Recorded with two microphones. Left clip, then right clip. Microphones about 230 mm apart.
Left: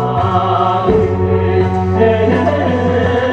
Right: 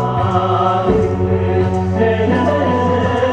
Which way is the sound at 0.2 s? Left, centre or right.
Left.